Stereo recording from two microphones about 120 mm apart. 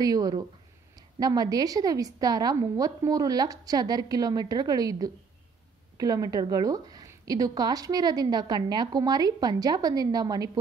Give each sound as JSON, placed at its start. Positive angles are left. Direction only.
{"t": 0.0, "sound": "a woman's voice", "side_deg": -30}